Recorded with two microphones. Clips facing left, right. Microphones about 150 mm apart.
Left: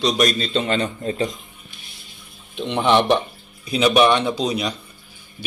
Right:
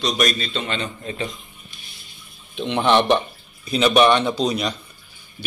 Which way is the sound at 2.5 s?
Centre (ahead or behind).